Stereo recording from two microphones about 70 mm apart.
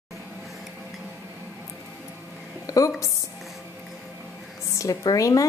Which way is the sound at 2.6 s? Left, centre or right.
Left.